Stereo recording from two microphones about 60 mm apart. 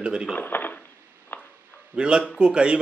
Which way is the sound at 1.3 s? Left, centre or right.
Left.